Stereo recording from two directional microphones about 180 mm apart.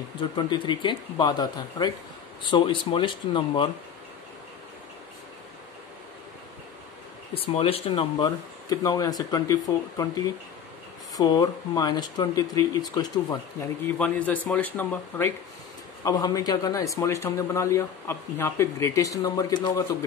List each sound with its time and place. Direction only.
0.4 s speech: 25° left (ahead or behind)
7.3 s speech: 30° left (ahead or behind)
11.1 s speech: 20° left (ahead or behind)
13.9 s a man's voice: 5° left (ahead or behind)